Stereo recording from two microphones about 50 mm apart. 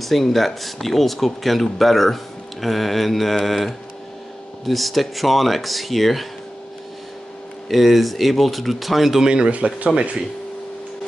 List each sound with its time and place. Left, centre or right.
0.0 s speech: centre
7.6 s speech: centre
9.3 s speech: right